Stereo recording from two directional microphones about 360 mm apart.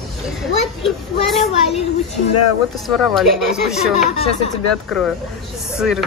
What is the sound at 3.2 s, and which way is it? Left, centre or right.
Speech, centre.